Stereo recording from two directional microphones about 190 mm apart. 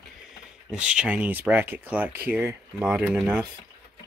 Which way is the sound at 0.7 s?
5° right (ahead or behind).